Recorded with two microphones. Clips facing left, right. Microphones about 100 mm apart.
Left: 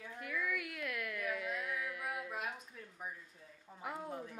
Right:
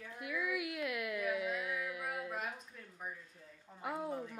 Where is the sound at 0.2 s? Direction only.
5° right (ahead or behind).